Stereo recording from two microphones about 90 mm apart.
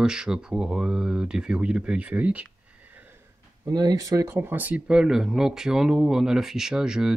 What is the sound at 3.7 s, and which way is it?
Speech, 45° right (ahead or behind).